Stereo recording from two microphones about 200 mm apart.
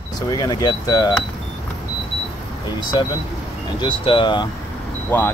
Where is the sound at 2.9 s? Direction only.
20° left (ahead or behind).